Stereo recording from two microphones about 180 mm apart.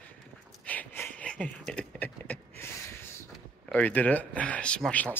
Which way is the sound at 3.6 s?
10° left (ahead or behind).